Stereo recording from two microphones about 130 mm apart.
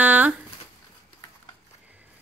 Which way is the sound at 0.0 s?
10° right (ahead or behind).